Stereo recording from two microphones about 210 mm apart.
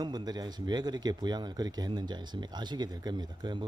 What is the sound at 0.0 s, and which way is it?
Speech, 20° right (ahead or behind).